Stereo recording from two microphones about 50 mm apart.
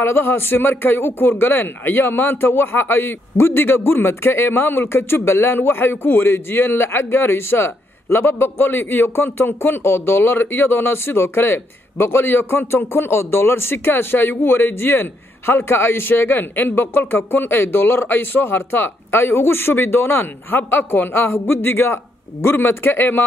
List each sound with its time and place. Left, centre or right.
0.0 s a man's voice: left